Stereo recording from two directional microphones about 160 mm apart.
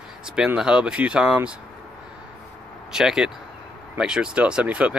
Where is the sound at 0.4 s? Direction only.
5° right (ahead or behind).